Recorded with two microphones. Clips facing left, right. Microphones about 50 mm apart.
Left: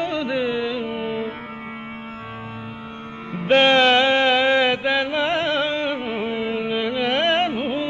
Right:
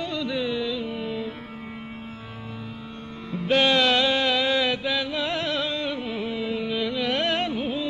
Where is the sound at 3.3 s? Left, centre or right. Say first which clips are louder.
Left 5 dB; left.